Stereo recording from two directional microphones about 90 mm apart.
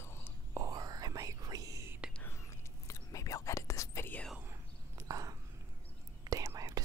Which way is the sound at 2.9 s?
40° left (ahead or behind).